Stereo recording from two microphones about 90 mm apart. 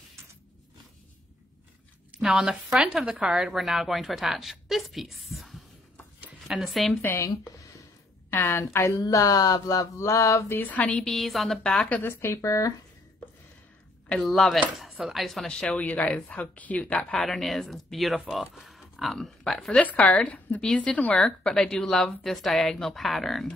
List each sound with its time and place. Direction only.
2.2 s a woman's voice: 10° right (ahead or behind)
7.0 s speech: 25° left (ahead or behind)
7.2 s speech: 40° left (ahead or behind)
8.3 s a woman's voice: 25° left (ahead or behind)
9.0 s a sound: 40° left (ahead or behind)
10.6 s speech: 15° left (ahead or behind)
11.1 s a woman's voice: centre (ahead or behind)
12.0 s a sound: 25° left (ahead or behind)
14.0 s a woman's voice: 5° left (ahead or behind)
17.2 s a woman's voice: 5° left (ahead or behind)
19.8 s a woman's voice: 15° left (ahead or behind)